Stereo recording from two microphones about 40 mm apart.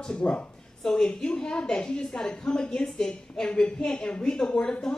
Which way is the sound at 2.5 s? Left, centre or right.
Left.